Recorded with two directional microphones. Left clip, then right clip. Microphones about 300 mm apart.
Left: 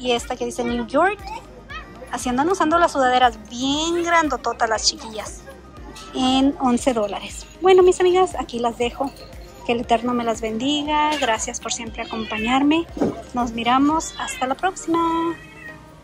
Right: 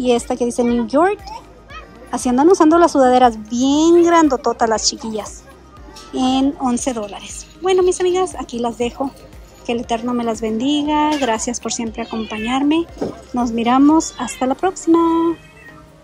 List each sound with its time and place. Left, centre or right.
0.0 s a woman's voice: centre